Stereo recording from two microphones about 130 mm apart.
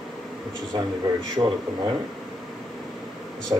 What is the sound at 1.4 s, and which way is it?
Speech, 30° right (ahead or behind).